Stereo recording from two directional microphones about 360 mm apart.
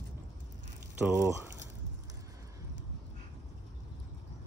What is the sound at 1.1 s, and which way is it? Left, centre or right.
Speech, centre.